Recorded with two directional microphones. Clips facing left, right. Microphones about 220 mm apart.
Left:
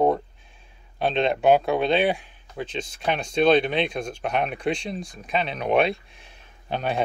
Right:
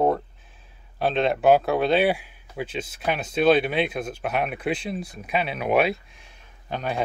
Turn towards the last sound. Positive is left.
turn(degrees=30)  # may be behind; listen again after turning